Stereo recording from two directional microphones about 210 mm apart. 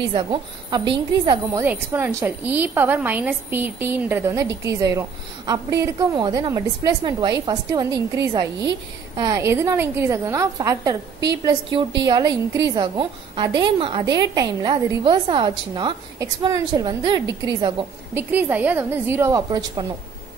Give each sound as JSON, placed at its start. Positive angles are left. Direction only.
{"t": 0.1, "sound": "a woman's voice", "side_deg": -20}
{"t": 1.6, "sound": "a woman's voice", "side_deg": -10}
{"t": 12.1, "sound": "a woman's voice", "side_deg": -15}
{"t": 18.1, "sound": "a woman's voice", "side_deg": -10}